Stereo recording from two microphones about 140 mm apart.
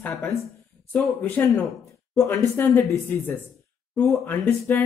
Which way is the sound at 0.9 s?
15° left (ahead or behind).